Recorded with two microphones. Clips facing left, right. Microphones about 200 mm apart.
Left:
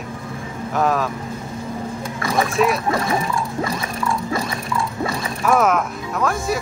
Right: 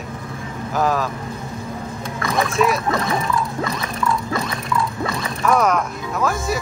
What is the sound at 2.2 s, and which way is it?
Speech, 30° left (ahead or behind).